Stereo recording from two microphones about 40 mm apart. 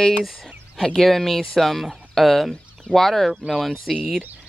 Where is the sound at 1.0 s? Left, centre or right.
Centre.